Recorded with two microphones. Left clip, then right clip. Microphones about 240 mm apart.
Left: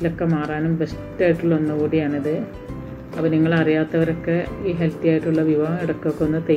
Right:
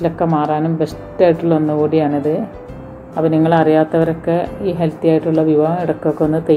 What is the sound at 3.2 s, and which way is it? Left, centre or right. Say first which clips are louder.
A woman's voice: right 6 dB; right.